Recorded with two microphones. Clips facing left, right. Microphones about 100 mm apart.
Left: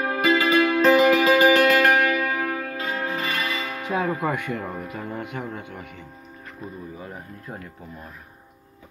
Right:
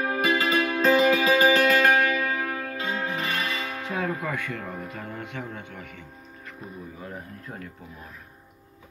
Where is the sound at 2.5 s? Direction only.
10° right (ahead or behind).